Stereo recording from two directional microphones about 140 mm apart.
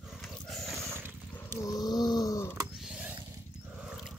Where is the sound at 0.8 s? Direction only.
15° right (ahead or behind).